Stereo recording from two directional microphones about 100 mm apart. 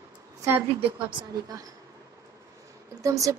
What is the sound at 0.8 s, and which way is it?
Speech, 65° right (ahead or behind).